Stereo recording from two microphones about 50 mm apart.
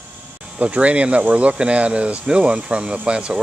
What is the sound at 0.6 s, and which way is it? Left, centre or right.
Speech, right.